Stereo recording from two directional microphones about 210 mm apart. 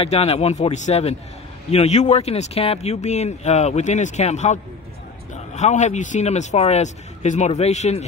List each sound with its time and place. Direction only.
0.0 s speech: 30° left (ahead or behind)